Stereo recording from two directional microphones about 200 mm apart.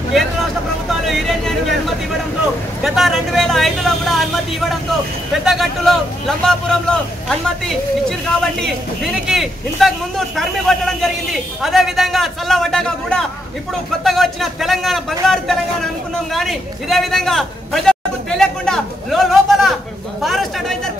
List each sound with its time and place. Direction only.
0.8 s vehicle: centre (ahead or behind)
2.8 s a man's voice: centre (ahead or behind)